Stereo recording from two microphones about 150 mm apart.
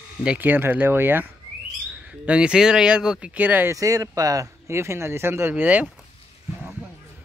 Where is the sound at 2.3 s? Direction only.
5° right (ahead or behind).